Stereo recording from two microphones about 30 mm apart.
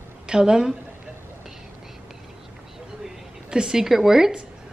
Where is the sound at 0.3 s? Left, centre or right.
Right.